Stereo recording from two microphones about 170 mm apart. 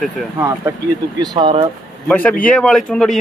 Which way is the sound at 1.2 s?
25° right (ahead or behind).